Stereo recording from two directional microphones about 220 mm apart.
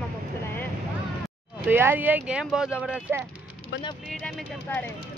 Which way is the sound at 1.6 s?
10° right (ahead or behind).